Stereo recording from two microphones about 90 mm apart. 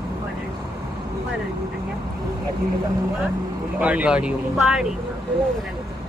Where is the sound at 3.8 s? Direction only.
15° right (ahead or behind).